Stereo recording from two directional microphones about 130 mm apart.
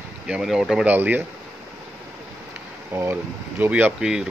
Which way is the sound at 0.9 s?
15° right (ahead or behind).